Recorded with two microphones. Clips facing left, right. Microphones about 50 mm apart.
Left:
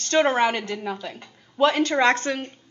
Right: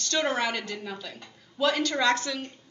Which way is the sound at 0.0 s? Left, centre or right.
Left.